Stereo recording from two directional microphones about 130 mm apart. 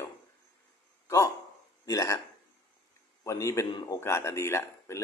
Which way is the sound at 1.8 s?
25° left (ahead or behind).